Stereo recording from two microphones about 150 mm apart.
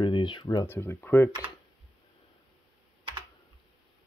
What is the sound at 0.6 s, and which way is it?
Speech, 15° left (ahead or behind).